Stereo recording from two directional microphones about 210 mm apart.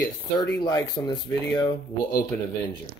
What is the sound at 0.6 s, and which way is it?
Speech, 20° left (ahead or behind).